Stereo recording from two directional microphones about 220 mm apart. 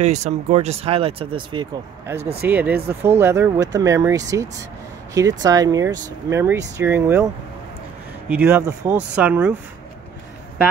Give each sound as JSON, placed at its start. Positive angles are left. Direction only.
{"t": 0.0, "sound": "speech", "side_deg": -30}
{"t": 2.4, "sound": "speech", "side_deg": -10}
{"t": 8.3, "sound": "speech", "side_deg": -10}